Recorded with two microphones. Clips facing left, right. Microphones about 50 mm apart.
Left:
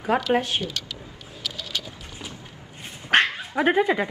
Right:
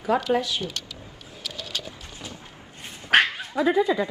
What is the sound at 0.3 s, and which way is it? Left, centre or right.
Speech, left.